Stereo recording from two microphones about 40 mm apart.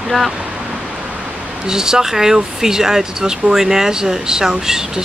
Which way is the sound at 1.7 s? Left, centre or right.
Centre.